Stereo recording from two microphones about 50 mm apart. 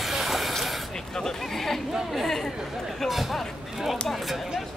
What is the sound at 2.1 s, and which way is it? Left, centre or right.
Chatter, centre.